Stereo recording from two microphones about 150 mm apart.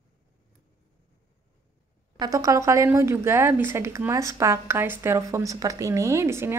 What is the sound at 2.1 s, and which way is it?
Speech, 25° right (ahead or behind).